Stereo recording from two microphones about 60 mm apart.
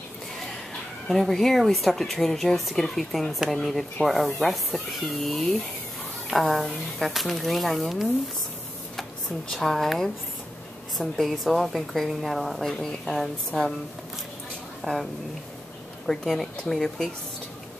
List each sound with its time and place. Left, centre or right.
1.0 s speech: centre
9.5 s speech: centre
14.9 s speech: centre
16.1 s speech: centre